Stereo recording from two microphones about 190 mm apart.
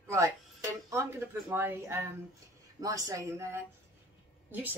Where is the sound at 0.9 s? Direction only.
10° right (ahead or behind).